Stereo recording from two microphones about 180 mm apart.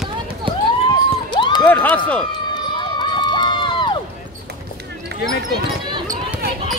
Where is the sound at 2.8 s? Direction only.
25° left (ahead or behind).